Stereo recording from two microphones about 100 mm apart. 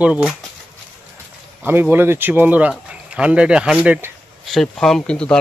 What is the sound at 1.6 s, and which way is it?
Speech, 20° right (ahead or behind).